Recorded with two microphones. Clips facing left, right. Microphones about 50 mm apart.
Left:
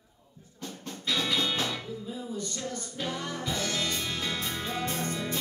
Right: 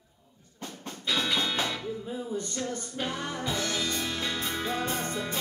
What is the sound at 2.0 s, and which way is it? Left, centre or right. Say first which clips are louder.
Music: right 2 dB; right.